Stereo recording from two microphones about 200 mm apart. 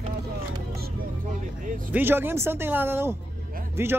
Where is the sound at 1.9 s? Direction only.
10° right (ahead or behind).